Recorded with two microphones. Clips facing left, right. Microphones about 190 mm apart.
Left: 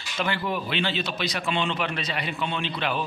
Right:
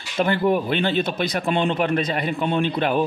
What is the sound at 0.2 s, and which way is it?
Speech, 50° right (ahead or behind).